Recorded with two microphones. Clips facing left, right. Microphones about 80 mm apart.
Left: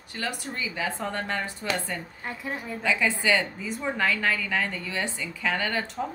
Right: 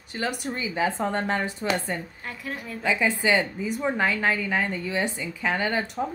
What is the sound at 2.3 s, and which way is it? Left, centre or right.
Speech, left.